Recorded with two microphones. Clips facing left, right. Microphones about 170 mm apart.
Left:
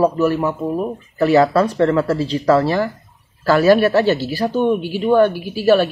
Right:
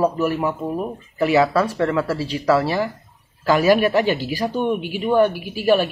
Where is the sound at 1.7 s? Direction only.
30° left (ahead or behind).